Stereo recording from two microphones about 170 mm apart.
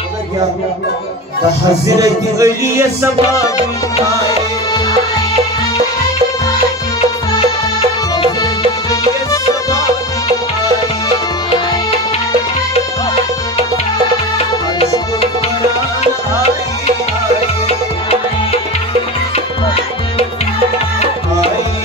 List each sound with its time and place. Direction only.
1.9 s music: 20° right (ahead or behind)